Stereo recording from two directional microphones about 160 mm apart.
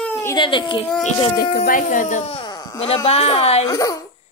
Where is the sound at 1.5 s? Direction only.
60° left (ahead or behind); by 2.8 s 25° left (ahead or behind).